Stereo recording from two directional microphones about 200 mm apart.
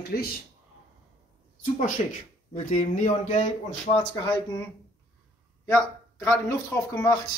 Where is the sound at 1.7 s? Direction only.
40° left (ahead or behind).